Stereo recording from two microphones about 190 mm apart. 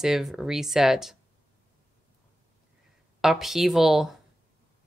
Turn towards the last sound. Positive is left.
turn(degrees=0)  # may be behind; listen again after turning